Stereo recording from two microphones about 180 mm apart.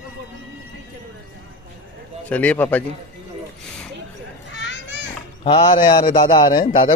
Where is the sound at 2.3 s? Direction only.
10° left (ahead or behind).